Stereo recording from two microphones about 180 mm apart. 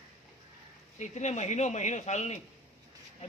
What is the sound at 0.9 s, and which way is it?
A man's voice, 40° left (ahead or behind).